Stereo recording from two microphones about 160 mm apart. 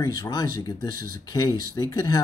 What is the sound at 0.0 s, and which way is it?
Speech, 25° left (ahead or behind).